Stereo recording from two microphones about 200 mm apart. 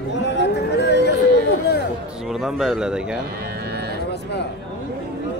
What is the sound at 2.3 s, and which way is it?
Speech, centre (ahead or behind).